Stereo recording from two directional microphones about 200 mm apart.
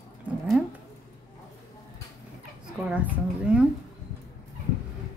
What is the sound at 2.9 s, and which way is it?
Speech, 5° right (ahead or behind).